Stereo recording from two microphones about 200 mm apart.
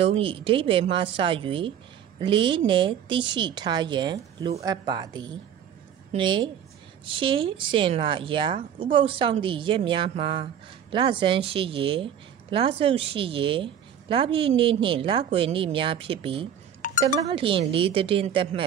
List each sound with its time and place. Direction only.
0.2 s speech: 25° right (ahead or behind)
16.8 s chink: 40° left (ahead or behind)
17.3 s speech: 25° right (ahead or behind)